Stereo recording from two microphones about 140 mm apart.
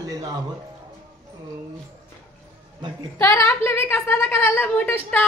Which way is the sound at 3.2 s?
20° left (ahead or behind).